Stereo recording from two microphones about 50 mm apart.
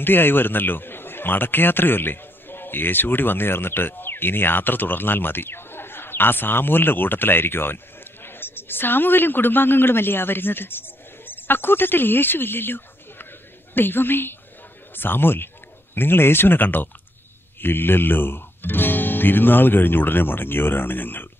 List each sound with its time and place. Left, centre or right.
0.0 s a man's voice: left